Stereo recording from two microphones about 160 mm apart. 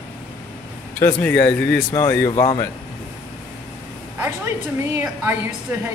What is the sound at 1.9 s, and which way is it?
Speech, 25° left (ahead or behind).